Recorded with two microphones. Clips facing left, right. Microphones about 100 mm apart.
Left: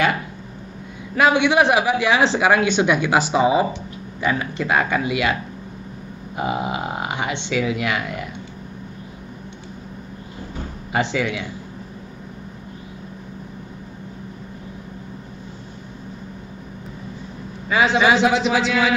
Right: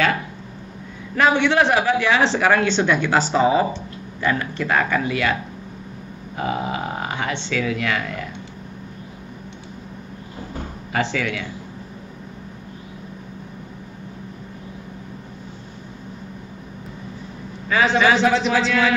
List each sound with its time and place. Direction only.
1.1 s a man's voice: 15° left (ahead or behind)
10.9 s speech: 20° left (ahead or behind)
17.7 s a man's voice: 15° left (ahead or behind)
18.1 s a man's voice: centre (ahead or behind)